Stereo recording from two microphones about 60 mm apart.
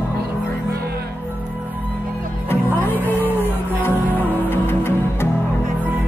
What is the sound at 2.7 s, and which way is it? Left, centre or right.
Music, left.